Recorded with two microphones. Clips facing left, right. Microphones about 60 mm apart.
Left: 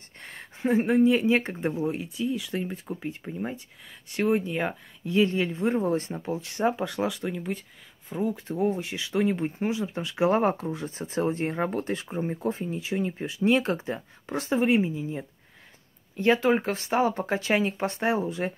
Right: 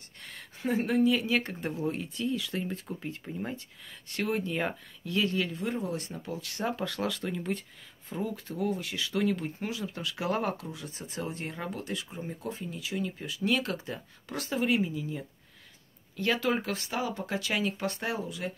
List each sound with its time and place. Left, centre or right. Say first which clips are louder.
0.2 s speech: left 6 dB; left
1.9 s speech: left 3 dB; centre
8.2 s speech: left 6 dB; left